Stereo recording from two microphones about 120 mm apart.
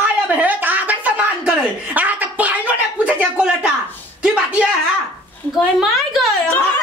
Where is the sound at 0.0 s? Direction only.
10° right (ahead or behind).